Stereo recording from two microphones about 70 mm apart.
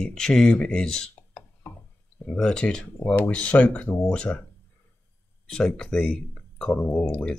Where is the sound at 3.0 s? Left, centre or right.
Left.